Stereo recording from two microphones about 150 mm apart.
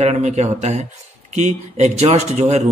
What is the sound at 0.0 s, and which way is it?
Speech, 50° right (ahead or behind).